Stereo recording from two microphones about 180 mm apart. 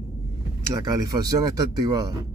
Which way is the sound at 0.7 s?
20° right (ahead or behind).